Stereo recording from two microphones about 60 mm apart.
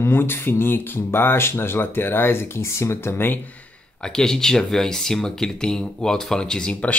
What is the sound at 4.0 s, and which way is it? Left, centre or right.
Speech, centre.